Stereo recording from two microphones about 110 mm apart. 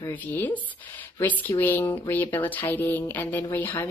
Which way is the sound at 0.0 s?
15° left (ahead or behind).